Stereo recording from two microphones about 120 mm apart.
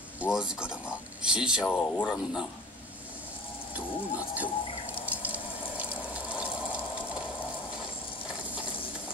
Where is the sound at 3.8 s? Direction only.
10° right (ahead or behind).